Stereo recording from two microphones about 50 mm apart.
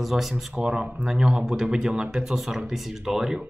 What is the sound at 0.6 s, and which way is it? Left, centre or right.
Speech, centre.